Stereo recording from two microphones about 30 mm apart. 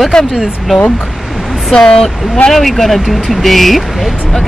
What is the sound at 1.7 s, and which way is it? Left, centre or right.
Speech, left.